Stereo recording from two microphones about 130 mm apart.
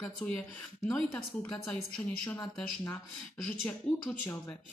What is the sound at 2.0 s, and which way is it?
Speech, 30° left (ahead or behind).